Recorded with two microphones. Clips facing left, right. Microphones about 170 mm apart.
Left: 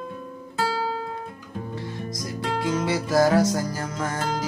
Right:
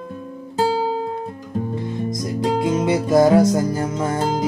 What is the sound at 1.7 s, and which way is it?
Music, 20° right (ahead or behind).